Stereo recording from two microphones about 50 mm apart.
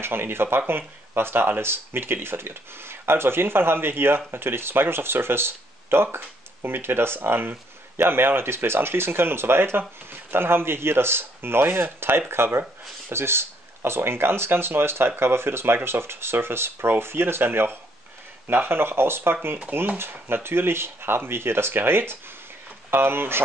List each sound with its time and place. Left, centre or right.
0.0 s speech: right